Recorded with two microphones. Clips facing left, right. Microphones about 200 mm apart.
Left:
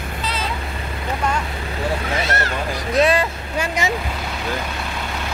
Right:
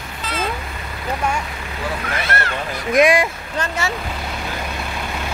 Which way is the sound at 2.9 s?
10° right (ahead or behind).